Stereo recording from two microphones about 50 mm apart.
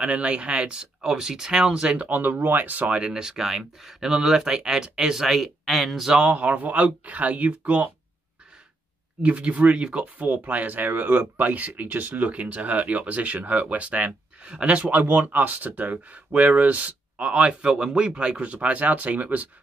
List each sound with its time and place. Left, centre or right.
0.0 s speech: right
2.0 s speech: right
3.0 s speech: centre
6.0 s speech: centre
6.3 s speech: right
9.2 s speech: right